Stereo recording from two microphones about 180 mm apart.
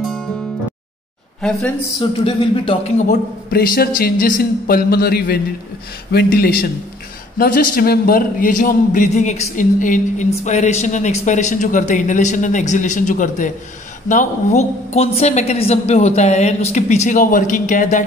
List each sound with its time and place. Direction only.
2.0 s speech: 30° left (ahead or behind)
3.1 s a man's voice: 55° left (ahead or behind)